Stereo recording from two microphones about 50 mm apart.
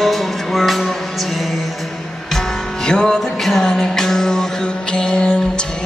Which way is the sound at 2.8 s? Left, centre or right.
Centre.